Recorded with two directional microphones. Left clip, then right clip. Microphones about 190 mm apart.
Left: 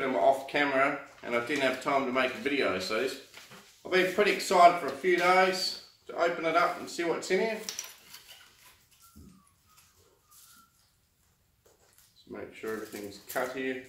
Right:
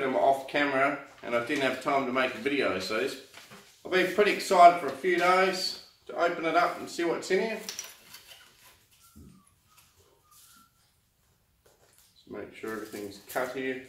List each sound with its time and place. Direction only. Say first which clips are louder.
0.0 s a sound: right 1 dB; 15° left (ahead or behind)
0.5 s speech: even; 15° left (ahead or behind)
12.3 s speech: even; 15° left (ahead or behind)